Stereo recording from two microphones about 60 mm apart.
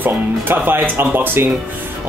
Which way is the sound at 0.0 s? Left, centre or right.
Right.